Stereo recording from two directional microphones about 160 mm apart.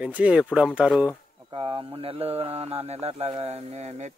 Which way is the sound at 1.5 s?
35° right (ahead or behind).